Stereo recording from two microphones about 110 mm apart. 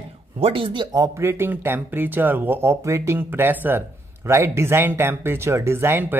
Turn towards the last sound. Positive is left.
turn(degrees=-20)  # may be behind; listen again after turning